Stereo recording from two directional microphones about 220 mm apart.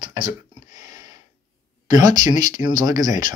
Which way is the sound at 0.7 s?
15° right (ahead or behind).